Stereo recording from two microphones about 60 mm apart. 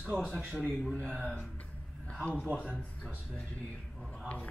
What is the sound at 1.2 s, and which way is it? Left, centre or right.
A man's voice, centre.